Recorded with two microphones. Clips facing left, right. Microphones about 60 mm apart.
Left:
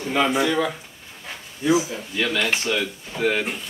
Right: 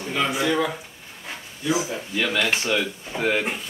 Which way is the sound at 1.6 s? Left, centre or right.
Left.